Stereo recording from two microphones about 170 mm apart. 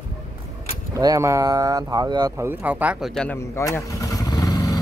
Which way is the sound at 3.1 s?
5° left (ahead or behind).